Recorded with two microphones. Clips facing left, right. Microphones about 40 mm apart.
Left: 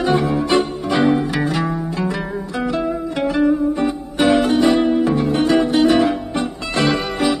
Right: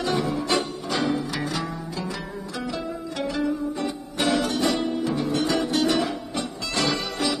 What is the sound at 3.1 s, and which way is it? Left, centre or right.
Music, left.